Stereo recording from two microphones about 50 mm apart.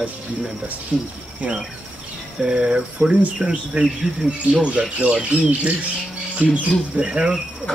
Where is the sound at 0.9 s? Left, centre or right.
Right.